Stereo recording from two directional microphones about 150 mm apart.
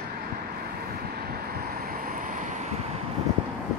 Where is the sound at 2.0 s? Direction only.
65° right (ahead or behind).